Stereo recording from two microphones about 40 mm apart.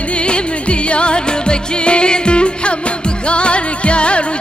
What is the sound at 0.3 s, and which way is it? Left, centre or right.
Music, left.